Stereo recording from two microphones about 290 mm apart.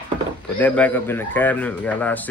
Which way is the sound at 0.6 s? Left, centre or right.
Centre.